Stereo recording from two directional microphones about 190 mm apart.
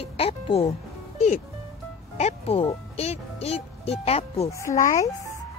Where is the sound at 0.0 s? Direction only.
30° left (ahead or behind).